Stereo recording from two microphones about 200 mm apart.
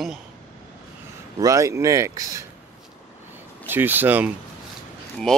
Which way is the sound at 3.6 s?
10° right (ahead or behind).